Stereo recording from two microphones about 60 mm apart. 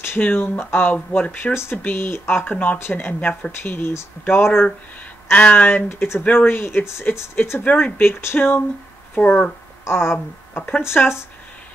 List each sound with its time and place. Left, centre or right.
0.2 s speech: left
0.9 s speech: left
1.3 s speech: left
3.6 s speech: left
5.3 s speech: left
5.7 s speech: left
7.6 s speech: left
8.0 s speech: left